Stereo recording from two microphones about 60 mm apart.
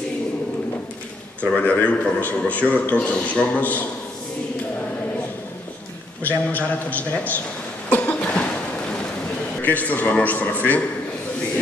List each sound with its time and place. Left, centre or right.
1.6 s a man's voice: left
6.2 s a man's voice: left
7.9 s cough: left
9.6 s a man's voice: left